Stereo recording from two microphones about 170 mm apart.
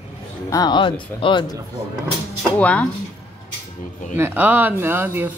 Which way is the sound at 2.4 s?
10° left (ahead or behind).